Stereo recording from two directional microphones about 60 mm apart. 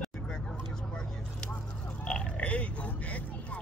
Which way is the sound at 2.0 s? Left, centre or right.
Centre.